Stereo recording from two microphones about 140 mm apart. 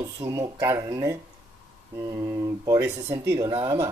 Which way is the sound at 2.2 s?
25° right (ahead or behind).